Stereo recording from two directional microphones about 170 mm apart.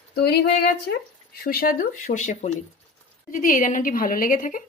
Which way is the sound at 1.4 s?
60° left (ahead or behind).